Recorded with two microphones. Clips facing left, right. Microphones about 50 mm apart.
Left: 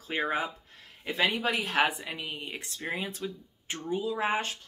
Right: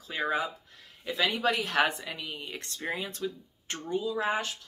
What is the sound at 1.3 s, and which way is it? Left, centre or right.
Speech, centre.